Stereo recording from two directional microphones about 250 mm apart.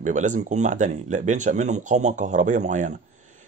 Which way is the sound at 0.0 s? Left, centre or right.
Right.